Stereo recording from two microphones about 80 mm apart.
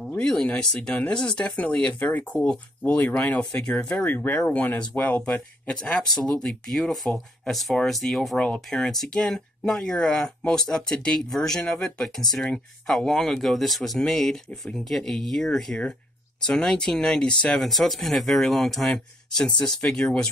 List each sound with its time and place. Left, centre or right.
0.2 s speech: centre
3.9 s speech: left
17.6 s speech: centre